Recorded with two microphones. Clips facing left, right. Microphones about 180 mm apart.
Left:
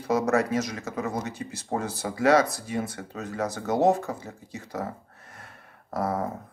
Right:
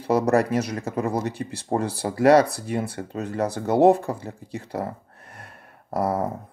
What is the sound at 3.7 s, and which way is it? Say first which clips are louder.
Speech: right 5 dB; 60° right (ahead or behind).